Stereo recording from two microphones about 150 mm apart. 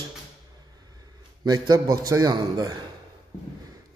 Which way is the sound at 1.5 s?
25° right (ahead or behind).